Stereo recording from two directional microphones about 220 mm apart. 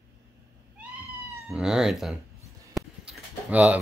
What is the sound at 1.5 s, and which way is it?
Speech, centre (ahead or behind).